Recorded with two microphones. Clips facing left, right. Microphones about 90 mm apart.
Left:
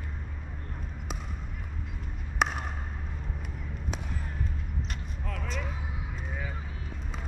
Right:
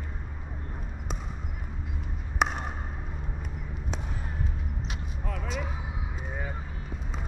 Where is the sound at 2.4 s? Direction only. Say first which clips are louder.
Right 1 dB; centre (ahead or behind).